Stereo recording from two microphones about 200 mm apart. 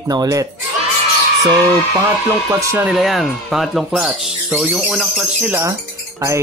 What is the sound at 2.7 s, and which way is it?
Speech, 5° right (ahead or behind).